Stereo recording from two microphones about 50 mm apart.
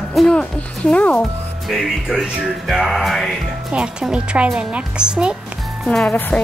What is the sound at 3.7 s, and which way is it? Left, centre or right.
A woman's voice, right.